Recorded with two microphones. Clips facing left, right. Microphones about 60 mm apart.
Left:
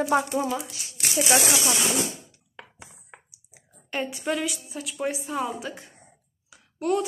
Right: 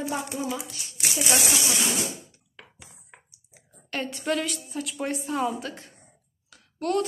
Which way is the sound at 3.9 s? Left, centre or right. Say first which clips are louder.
Even; centre.